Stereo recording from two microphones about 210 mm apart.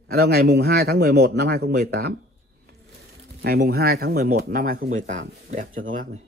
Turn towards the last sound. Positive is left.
turn(degrees=-40)  # may be behind; listen again after turning